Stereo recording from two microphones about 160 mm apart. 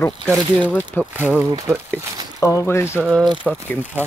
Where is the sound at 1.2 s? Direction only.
10° right (ahead or behind).